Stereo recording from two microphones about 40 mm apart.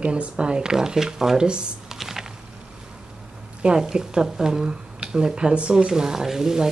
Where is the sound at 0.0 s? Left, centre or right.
Right.